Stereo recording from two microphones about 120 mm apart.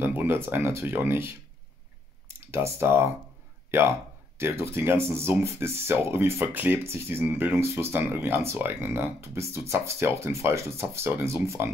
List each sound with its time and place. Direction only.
0.0 s speech: 15° right (ahead or behind)
4.4 s speech: 20° right (ahead or behind)